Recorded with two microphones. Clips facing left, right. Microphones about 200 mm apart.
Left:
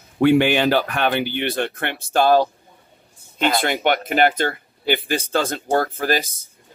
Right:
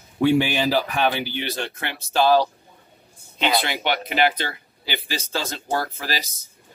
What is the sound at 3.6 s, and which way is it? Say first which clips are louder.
Speech: left 5 dB; 50° left (ahead or behind).